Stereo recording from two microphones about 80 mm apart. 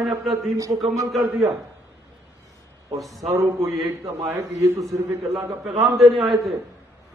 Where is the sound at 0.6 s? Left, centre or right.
Right.